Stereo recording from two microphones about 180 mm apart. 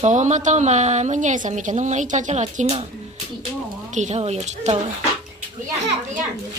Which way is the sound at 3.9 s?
40° right (ahead or behind).